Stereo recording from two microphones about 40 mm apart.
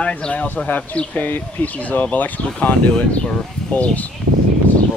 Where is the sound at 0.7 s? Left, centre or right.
Left.